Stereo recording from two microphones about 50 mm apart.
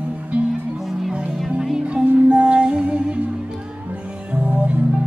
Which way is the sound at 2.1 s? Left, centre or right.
Right.